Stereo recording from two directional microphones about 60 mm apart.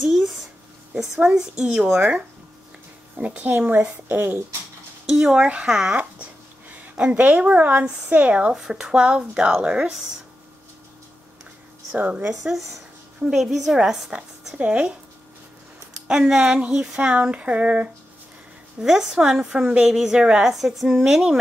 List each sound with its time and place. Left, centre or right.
0.0 s a sound: centre
0.9 s a woman's voice: centre; by 4.4 s right
5.1 s a woman's voice: centre
7.0 s a child's voice: right
11.9 s a woman's voice: right
13.2 s a woman's voice: centre
14.6 s a child's voice: right
16.1 s a woman's voice: centre
18.8 s a woman's voice: centre